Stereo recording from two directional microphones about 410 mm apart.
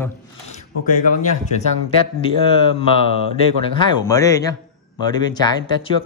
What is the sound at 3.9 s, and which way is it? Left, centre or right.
Speech, centre.